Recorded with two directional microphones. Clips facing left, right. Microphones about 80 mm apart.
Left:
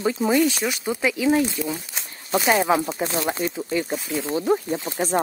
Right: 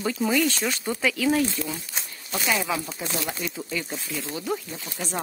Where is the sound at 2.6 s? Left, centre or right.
Left.